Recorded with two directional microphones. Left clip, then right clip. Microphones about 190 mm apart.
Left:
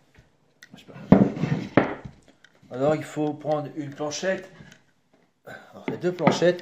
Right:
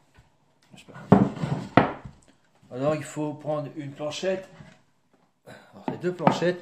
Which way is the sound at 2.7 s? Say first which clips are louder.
Left 3 dB; 15° right (ahead or behind).